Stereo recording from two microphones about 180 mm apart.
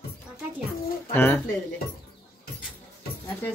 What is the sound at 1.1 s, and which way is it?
Speech, 10° left (ahead or behind).